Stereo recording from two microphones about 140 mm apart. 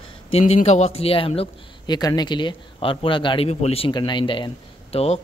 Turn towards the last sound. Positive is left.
turn(degrees=45)  # may be behind; listen again after turning